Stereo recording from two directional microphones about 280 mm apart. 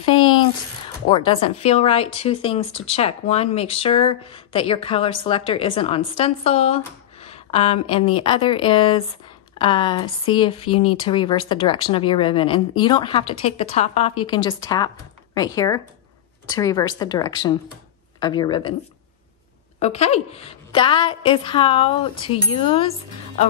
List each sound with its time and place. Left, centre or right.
0.0 s a sound: centre
1.0 s speech: centre
19.8 s speech: left